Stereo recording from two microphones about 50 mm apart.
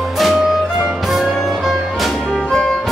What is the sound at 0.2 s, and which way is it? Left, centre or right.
Music, centre.